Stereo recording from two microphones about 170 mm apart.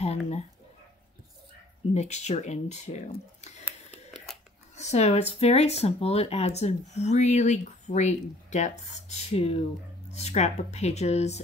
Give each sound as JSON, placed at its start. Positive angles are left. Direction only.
{"t": 0.0, "sound": "a sound", "side_deg": 40}
{"t": 2.0, "sound": "speech", "side_deg": 40}
{"t": 4.7, "sound": "speech", "side_deg": 40}